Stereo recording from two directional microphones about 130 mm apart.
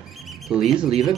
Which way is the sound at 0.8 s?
50° right (ahead or behind).